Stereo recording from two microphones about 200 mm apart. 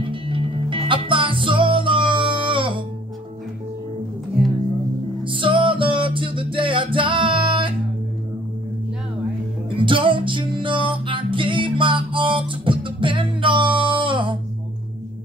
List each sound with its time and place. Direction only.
0.0 s music: 25° right (ahead or behind)
4.4 s music: 5° right (ahead or behind)
5.2 s music: 25° right (ahead or behind)
9.7 s music: 25° right (ahead or behind)